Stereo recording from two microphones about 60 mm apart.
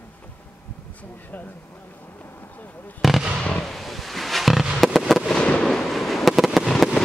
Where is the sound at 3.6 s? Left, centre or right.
Centre.